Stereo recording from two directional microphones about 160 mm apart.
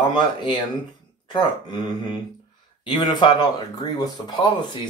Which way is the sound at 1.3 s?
30° left (ahead or behind).